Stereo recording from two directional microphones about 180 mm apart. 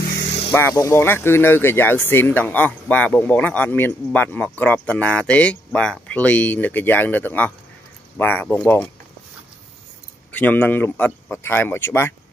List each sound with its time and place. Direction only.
0.0 s vehicle: 70° left (ahead or behind)
0.5 s speech: 15° left (ahead or behind)
10.3 s speech: 10° left (ahead or behind)